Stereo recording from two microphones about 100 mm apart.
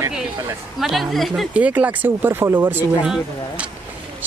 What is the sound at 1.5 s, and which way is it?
Speech, 15° right (ahead or behind).